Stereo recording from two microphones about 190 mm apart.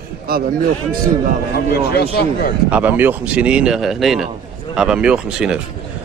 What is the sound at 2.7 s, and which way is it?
Speech, 10° right (ahead or behind).